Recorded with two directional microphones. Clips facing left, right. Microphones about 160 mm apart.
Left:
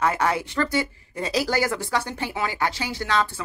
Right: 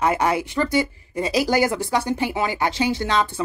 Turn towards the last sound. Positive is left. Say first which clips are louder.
# right 4 dB
turn(degrees=-20)  # may be behind; listen again after turning